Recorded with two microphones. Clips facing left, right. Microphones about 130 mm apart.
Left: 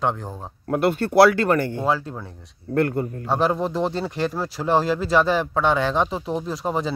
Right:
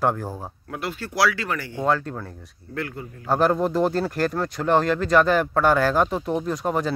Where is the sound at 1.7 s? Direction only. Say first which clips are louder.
Even; 5° left (ahead or behind).